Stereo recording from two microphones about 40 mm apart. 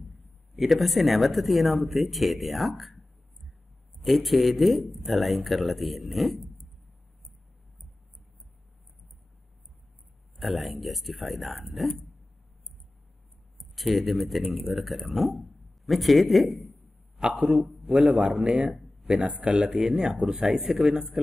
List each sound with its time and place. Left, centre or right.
0.6 s a man's voice: centre
4.0 s a man's voice: centre
10.3 s a man's voice: centre
13.7 s a man's voice: centre
17.4 s speech: centre
17.8 s a man's voice: right
19.8 s speech: centre